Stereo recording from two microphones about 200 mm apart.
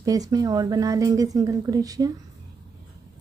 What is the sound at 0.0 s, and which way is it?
Speech, 20° right (ahead or behind).